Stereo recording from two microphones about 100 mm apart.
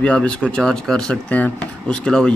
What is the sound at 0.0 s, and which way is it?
A man's voice, 10° left (ahead or behind).